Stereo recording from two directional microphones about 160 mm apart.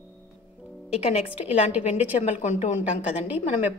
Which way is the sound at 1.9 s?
45° left (ahead or behind).